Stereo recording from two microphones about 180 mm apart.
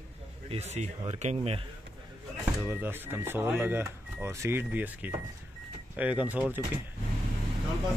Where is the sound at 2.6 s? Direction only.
10° right (ahead or behind).